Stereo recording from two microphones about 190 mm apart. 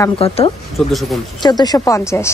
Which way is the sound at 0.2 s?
30° left (ahead or behind).